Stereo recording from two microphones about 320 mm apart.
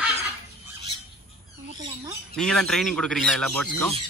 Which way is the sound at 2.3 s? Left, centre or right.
Centre.